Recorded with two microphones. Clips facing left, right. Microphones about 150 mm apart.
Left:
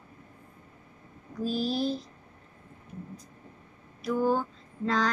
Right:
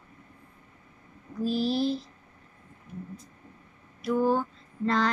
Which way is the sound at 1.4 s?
45° left (ahead or behind).